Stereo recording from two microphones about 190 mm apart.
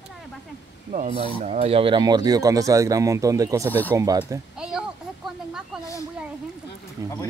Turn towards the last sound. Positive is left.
turn(degrees=-15)  # may be behind; listen again after turning